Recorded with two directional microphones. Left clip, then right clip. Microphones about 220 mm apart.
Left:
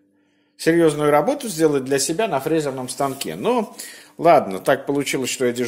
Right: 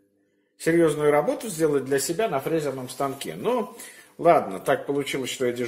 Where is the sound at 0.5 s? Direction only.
45° left (ahead or behind).